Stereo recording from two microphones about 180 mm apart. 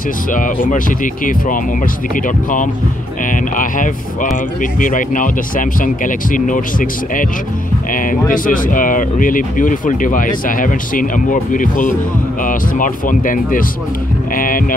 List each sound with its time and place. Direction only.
0.3 s speech: 50° left (ahead or behind)